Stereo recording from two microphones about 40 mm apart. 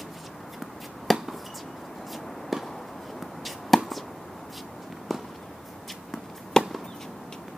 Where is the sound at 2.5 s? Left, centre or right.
Centre.